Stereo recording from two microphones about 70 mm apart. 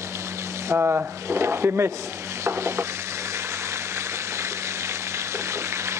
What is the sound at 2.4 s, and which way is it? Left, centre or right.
Stir, right.